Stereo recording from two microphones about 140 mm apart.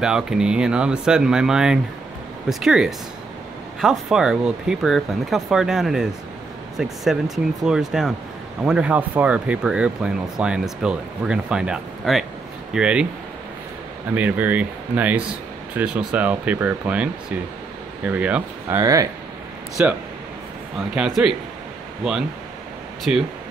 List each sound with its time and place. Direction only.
0.0 s speech: 5° right (ahead or behind)
14.1 s speech: 10° right (ahead or behind)
18.8 s speech: 25° right (ahead or behind)
19.8 s speech: 10° right (ahead or behind)